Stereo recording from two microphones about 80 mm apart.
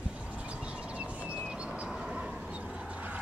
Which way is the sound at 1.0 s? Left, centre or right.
Centre.